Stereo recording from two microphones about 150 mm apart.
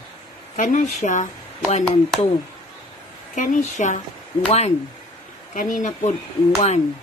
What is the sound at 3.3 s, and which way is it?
Speech, 55° left (ahead or behind).